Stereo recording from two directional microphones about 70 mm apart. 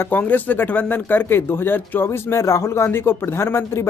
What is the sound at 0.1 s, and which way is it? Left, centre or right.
Speech, left.